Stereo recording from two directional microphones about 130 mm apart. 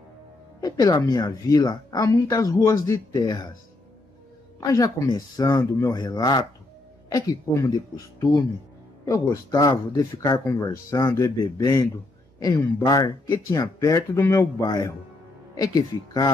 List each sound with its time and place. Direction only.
0.6 s speech: 30° left (ahead or behind)
4.6 s a man's voice: 30° left (ahead or behind)
14.6 s speech: 30° left (ahead or behind)